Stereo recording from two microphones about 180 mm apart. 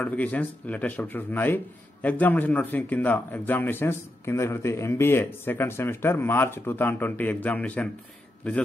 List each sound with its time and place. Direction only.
0.0 s a man's voice: 10° left (ahead or behind)